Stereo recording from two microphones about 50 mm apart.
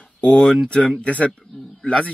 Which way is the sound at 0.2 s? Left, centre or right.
Left.